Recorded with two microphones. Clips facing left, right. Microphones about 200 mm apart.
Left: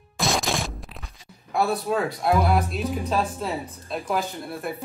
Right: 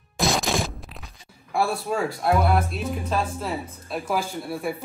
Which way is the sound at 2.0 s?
Centre (ahead or behind).